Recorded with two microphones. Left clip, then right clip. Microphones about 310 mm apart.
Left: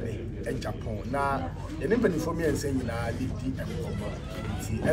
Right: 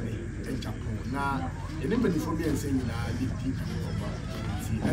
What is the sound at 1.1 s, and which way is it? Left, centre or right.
Speech, centre.